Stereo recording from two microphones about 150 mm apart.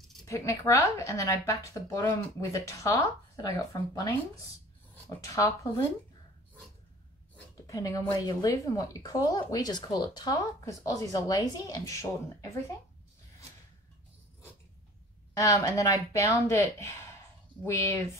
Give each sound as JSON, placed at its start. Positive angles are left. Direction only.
{"t": 0.3, "sound": "speech", "side_deg": 20}
{"t": 7.6, "sound": "speech", "side_deg": 20}
{"t": 15.3, "sound": "speech", "side_deg": 20}